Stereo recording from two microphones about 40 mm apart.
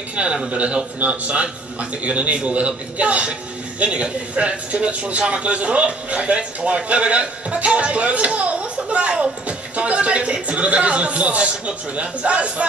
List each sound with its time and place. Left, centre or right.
0.1 s a man's voice: right